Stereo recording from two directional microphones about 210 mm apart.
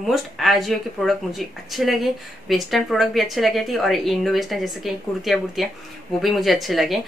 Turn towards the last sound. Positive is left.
turn(degrees=0)  # may be behind; listen again after turning